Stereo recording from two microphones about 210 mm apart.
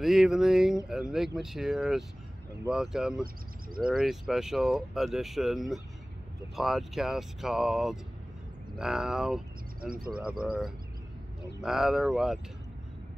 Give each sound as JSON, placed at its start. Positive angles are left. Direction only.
{"t": 0.0, "sound": "speech", "side_deg": 0}
{"t": 9.8, "sound": "speech", "side_deg": -45}
{"t": 11.6, "sound": "speech", "side_deg": 0}